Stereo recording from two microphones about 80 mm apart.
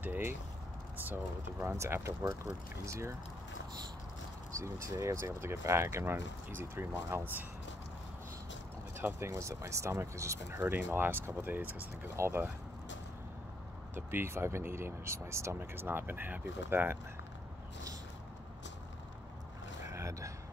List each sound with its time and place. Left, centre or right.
0.0 s speech: right
4.7 s speech: right
8.9 s speech: right
10.6 s speech: right
13.9 s speech: right
19.9 s a sound: right